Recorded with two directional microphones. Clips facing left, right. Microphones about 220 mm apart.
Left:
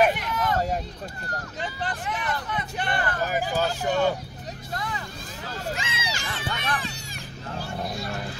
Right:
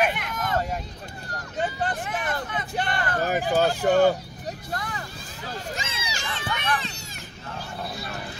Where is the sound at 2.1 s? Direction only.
50° right (ahead or behind).